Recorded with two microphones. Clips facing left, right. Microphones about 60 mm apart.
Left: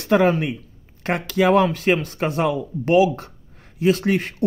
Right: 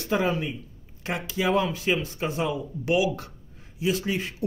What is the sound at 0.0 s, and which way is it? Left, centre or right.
Speech, left.